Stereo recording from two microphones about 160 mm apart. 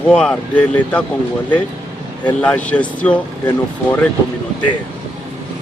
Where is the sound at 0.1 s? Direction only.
5° left (ahead or behind).